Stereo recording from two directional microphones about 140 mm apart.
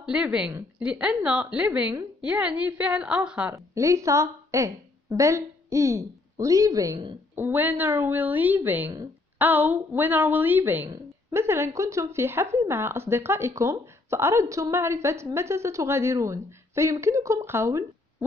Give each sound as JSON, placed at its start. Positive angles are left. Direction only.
{"t": 0.0, "sound": "a woman's voice", "side_deg": -5}
{"t": 0.5, "sound": "a woman's voice", "side_deg": -20}
{"t": 0.8, "sound": "a woman's voice", "side_deg": -10}
{"t": 3.5, "sound": "a woman's voice", "side_deg": -20}